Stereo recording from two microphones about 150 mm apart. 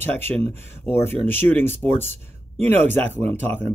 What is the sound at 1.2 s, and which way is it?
Speech, 15° left (ahead or behind).